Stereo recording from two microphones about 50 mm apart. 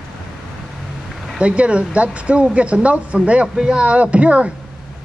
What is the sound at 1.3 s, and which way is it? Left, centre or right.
Speech, right.